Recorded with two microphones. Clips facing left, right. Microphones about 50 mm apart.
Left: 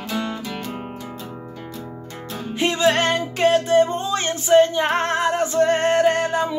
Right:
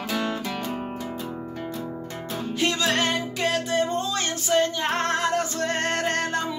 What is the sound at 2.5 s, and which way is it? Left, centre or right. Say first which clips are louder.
Music: left 6 dB; left.